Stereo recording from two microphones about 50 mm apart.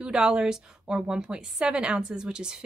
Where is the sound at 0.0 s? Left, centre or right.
Centre.